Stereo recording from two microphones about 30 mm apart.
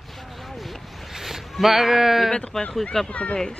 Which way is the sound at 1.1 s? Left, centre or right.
Centre.